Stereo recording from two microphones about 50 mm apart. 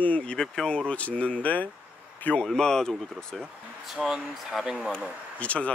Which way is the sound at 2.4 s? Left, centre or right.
Centre.